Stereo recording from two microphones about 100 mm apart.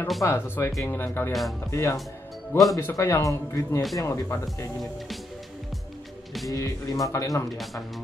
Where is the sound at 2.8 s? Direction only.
25° left (ahead or behind).